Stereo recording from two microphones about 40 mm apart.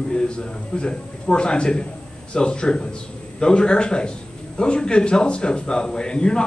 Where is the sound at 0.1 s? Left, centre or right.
Left.